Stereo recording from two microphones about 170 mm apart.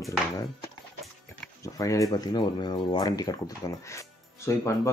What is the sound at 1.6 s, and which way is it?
Speech, 20° left (ahead or behind).